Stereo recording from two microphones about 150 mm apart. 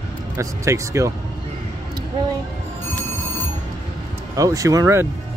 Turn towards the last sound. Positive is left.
turn(degrees=-20)  # may be behind; listen again after turning